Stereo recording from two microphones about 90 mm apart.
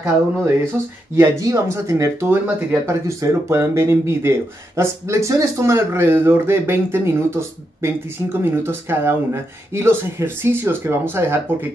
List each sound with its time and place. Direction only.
1.1 s speech: 35° right (ahead or behind)
2.9 s speech: 35° right (ahead or behind)